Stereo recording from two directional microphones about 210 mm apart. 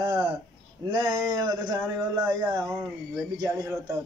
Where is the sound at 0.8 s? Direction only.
20° right (ahead or behind).